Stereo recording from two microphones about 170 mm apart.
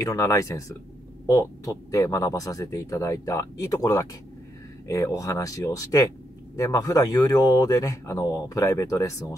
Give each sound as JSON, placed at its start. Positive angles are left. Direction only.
{"t": 0.0, "sound": "speech", "side_deg": 20}